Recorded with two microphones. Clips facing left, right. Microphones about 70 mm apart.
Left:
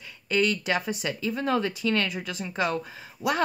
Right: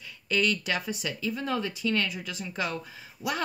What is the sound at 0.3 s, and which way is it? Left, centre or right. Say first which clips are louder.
Speech: left 3 dB; left.